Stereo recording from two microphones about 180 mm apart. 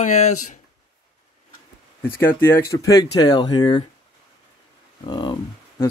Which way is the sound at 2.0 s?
10° left (ahead or behind).